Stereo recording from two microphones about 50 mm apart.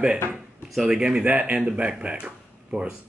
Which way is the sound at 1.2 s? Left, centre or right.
Right.